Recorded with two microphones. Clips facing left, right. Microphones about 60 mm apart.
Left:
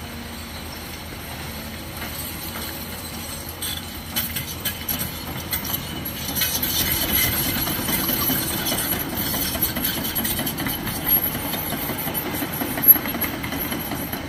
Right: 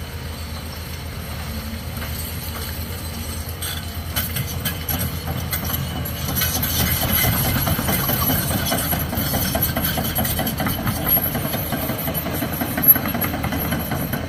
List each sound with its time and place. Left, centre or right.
6.2 s train: centre
6.5 s train: centre
7.2 s engine: right; by 10.3 s centre
10.4 s vehicle: centre